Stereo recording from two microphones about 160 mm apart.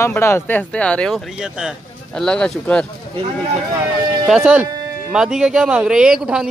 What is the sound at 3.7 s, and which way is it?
Speech, 25° right (ahead or behind).